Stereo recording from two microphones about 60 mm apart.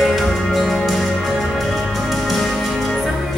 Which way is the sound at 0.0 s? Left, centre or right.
Centre.